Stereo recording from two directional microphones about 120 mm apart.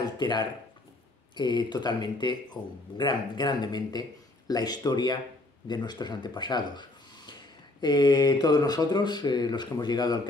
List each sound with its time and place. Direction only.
0.0 s a sound: 35° left (ahead or behind)
1.3 s speech: 40° left (ahead or behind)
2.6 s a man's voice: centre (ahead or behind)
3.0 s speech: 35° left (ahead or behind)